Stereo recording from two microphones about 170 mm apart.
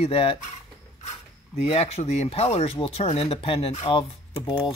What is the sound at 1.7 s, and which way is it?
Speech, 35° left (ahead or behind).